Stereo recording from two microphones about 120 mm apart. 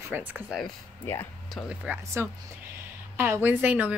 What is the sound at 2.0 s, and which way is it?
A woman's voice, 25° right (ahead or behind).